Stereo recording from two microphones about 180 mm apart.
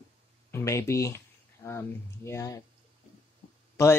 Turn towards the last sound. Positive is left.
turn(degrees=15)  # may be behind; listen again after turning